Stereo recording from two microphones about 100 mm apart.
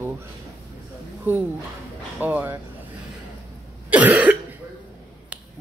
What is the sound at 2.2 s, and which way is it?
Speech, 20° right (ahead or behind).